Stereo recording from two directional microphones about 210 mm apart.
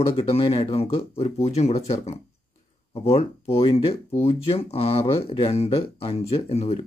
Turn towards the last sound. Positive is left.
turn(degrees=30)  # may be behind; listen again after turning